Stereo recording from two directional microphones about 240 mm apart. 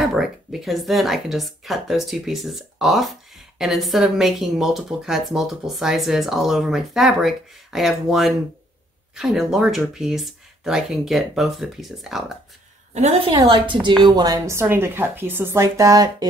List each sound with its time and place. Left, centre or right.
0.0 s speech: centre
12.9 s a woman's voice: right